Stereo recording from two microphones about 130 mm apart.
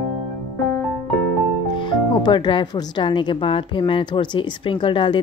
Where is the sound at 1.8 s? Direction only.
35° left (ahead or behind).